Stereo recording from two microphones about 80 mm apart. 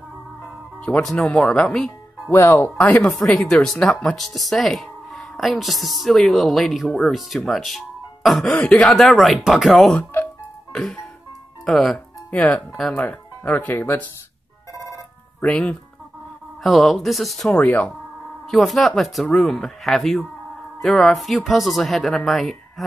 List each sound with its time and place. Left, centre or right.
1.0 s speech: centre
2.3 s speech: left
3.0 s speech: centre
8.5 s speech: centre
8.9 s speech: centre
10.7 s music: centre
11.6 s speech: centre
12.4 s speech: centre
15.4 s speech: centre
16.6 s speech: centre
17.5 s speech: centre
18.5 s speech: centre